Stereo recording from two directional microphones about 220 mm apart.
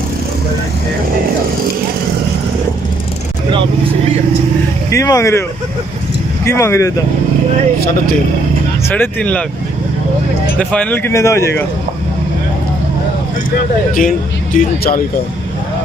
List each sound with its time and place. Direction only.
4.9 s speech: 15° left (ahead or behind)
6.4 s speech: 10° left (ahead or behind)
8.8 s speech: 10° left (ahead or behind)
10.6 s speech: 5° left (ahead or behind)
13.9 s speech: 40° left (ahead or behind)